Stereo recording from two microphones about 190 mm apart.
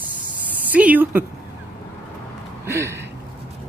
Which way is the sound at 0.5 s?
10° right (ahead or behind).